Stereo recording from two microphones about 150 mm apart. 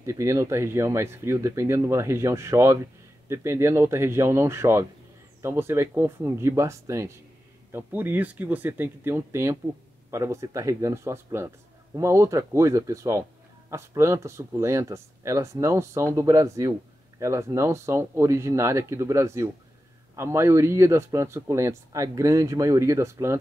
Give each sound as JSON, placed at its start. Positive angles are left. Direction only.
{"t": 0.0, "sound": "a man's voice", "side_deg": -20}